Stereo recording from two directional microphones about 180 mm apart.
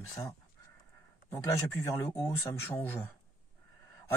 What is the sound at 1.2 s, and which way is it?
Speech, 15° left (ahead or behind).